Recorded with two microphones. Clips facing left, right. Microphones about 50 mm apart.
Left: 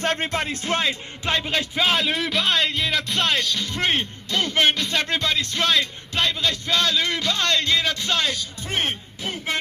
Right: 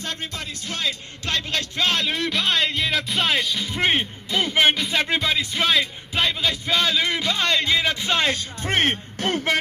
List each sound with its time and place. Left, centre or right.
0.0 s speech: left
1.2 s speech: centre
1.9 s speech: centre
8.3 s a man's voice: right